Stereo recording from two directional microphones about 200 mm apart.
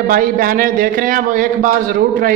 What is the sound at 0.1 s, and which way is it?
A man's voice, 45° right (ahead or behind).